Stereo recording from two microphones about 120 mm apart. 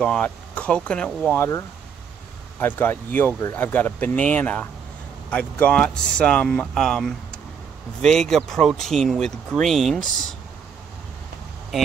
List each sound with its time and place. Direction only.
0.0 s speech: 10° left (ahead or behind)
2.6 s speech: 15° left (ahead or behind)
11.7 s speech: centre (ahead or behind)